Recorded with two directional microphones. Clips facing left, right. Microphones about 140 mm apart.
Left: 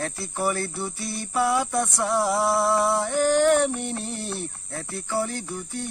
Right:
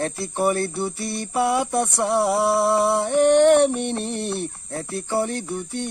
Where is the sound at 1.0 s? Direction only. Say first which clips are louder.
Right 4 dB; 65° right (ahead or behind).